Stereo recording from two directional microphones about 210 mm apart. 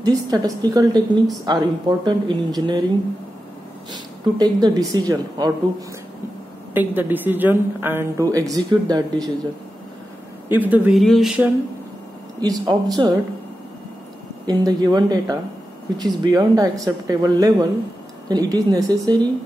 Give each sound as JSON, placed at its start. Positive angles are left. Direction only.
{"t": 0.0, "sound": "speech", "side_deg": -20}
{"t": 3.9, "sound": "speech", "side_deg": -20}
{"t": 6.7, "sound": "a woman's voice", "side_deg": -10}
{"t": 10.5, "sound": "speech", "side_deg": -10}
{"t": 12.4, "sound": "a woman's voice", "side_deg": -20}
{"t": 14.4, "sound": "a woman's voice", "side_deg": -20}